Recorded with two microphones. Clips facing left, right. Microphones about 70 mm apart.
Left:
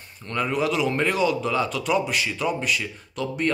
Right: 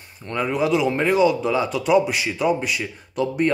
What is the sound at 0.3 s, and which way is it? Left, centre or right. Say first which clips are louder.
Speech: right 3 dB; centre.